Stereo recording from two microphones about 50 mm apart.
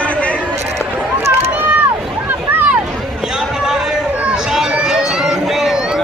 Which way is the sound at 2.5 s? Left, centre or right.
Right.